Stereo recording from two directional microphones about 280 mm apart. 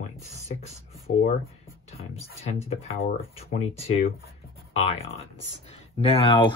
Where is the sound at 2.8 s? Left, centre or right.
Left.